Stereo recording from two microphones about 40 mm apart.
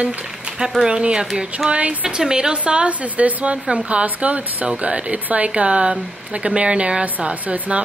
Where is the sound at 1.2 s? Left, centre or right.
Centre.